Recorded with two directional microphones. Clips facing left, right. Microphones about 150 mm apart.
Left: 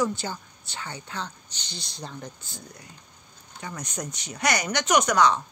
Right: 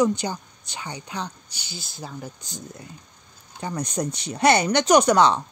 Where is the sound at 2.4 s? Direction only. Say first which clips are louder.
Right 6 dB; 20° right (ahead or behind).